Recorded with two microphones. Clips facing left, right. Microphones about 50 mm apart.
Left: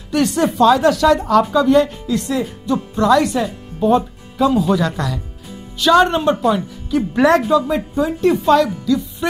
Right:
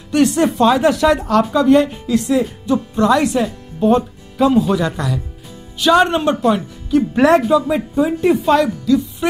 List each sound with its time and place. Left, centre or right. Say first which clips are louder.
0.1 s speech: right 2 dB; centre
0.6 s speech: left 2 dB; centre
1.3 s speech: left 1 dB; centre
1.7 s speech: right 1 dB; centre
2.1 s speech: right 5 dB; centre
3.0 s speech: left 1 dB; centre
3.3 s speech: right 2 dB; centre
8.8 s a woman's voice: right 3 dB; centre